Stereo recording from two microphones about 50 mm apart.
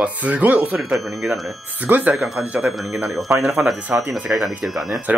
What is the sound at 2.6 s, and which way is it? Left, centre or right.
Speech, centre.